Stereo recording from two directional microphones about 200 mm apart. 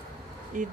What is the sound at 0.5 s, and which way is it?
Speech, 40° right (ahead or behind).